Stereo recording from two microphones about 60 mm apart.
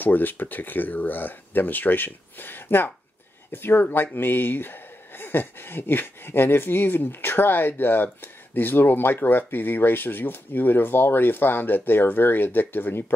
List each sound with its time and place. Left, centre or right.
0.0 s speech: left